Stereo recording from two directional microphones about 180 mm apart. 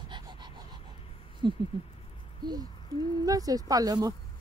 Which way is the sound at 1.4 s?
25° right (ahead or behind).